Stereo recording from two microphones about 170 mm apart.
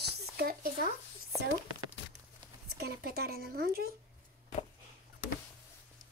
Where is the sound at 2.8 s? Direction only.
65° right (ahead or behind).